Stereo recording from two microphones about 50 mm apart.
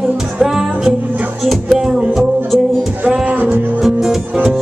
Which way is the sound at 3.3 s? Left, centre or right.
Right.